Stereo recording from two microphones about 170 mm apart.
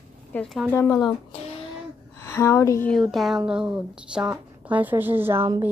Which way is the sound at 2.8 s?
Centre (ahead or behind).